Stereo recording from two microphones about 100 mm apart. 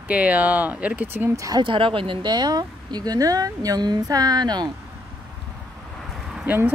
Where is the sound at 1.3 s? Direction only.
35° right (ahead or behind).